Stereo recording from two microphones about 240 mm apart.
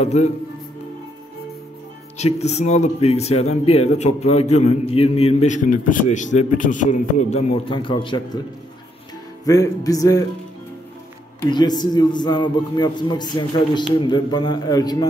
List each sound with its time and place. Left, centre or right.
0.0 s speech: left
2.1 s speech: left
9.4 s a man's voice: centre
11.5 s a man's voice: centre